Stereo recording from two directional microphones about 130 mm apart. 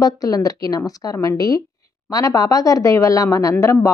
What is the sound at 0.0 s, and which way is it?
Speech, 25° left (ahead or behind).